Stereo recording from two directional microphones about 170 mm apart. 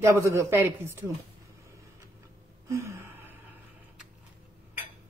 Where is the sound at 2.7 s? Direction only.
15° right (ahead or behind).